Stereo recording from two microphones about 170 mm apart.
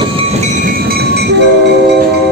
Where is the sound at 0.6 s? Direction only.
65° right (ahead or behind).